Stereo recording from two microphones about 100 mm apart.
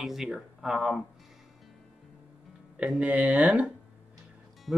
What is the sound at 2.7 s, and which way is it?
Speech, 15° right (ahead or behind).